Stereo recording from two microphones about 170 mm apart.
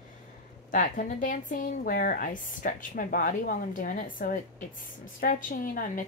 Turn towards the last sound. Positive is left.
turn(degrees=55)  # may be behind; listen again after turning